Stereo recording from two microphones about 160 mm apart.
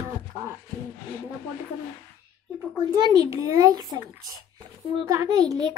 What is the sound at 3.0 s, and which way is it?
A child's voice, 25° right (ahead or behind).